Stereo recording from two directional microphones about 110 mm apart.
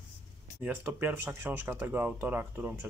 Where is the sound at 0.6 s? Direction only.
15° right (ahead or behind).